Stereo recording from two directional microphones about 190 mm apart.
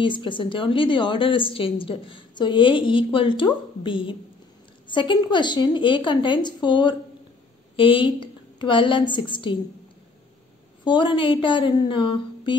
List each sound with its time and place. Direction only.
0.0 s a woman's voice: 25° left (ahead or behind)
10.8 s a woman's voice: 25° left (ahead or behind)